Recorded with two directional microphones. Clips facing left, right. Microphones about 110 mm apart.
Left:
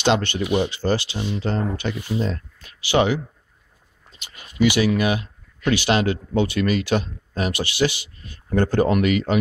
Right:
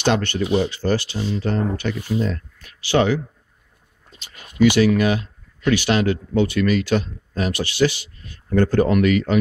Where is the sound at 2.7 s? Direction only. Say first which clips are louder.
Right 1 dB; 10° left (ahead or behind).